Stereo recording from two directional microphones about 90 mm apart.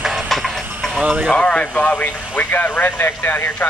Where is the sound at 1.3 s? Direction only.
10° left (ahead or behind).